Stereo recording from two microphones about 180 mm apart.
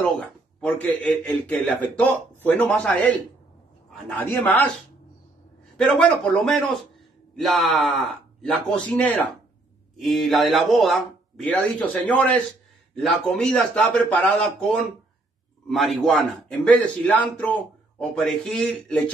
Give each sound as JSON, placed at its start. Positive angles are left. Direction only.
{"t": 0.0, "sound": "a man's voice", "side_deg": 5}
{"t": 5.8, "sound": "a man's voice", "side_deg": 5}